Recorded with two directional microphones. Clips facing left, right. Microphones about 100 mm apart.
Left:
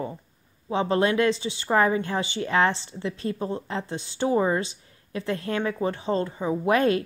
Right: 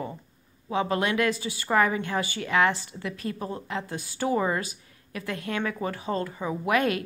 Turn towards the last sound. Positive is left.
turn(degrees=30)  # may be behind; listen again after turning